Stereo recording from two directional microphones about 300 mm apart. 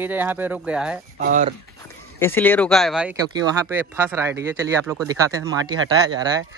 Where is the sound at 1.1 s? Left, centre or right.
Right.